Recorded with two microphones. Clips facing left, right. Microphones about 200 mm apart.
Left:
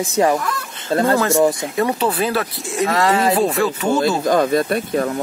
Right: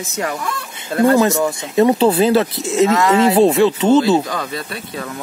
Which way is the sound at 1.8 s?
25° right (ahead or behind).